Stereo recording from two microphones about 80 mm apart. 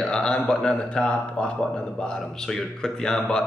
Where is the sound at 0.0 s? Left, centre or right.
Centre.